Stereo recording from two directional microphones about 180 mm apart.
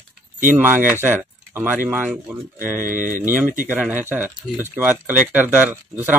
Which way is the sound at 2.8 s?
50° right (ahead or behind).